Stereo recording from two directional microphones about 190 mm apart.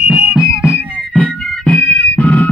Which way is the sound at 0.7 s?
5° left (ahead or behind).